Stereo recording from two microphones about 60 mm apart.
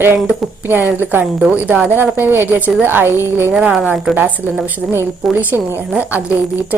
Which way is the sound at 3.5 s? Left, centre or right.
Centre.